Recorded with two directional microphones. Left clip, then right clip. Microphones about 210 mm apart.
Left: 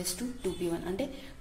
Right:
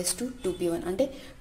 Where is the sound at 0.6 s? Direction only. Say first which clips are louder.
Right 8 dB; 30° right (ahead or behind).